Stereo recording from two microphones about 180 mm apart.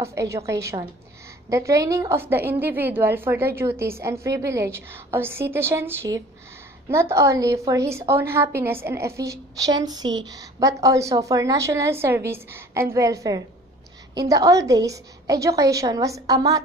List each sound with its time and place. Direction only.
0.0 s a woman's voice: 15° right (ahead or behind)